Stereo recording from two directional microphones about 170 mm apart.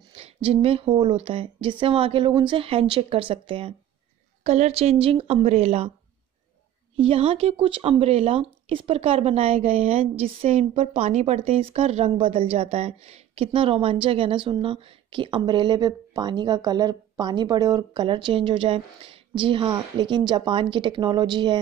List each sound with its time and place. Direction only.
0.1 s speech: 35° right (ahead or behind)
7.0 s speech: 35° right (ahead or behind)